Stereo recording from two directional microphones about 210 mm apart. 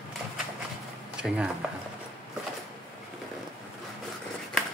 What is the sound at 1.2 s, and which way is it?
Speech, 5° right (ahead or behind).